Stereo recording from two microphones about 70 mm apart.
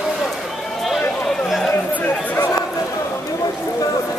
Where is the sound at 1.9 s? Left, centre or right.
Left.